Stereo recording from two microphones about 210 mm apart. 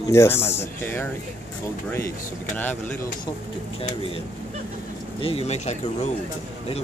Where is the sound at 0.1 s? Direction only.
10° left (ahead or behind).